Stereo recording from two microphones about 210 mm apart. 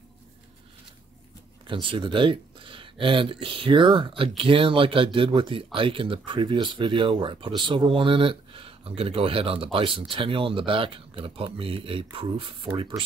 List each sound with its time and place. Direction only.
1.7 s speech: 25° right (ahead or behind)